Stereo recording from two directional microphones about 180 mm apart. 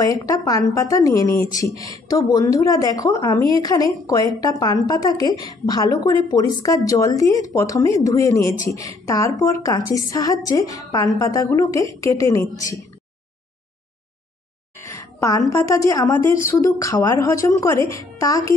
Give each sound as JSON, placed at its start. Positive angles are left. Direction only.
{"t": 0.0, "sound": "a woman's voice", "side_deg": 20}
{"t": 14.8, "sound": "a sound", "side_deg": 15}
{"t": 15.5, "sound": "speech", "side_deg": 15}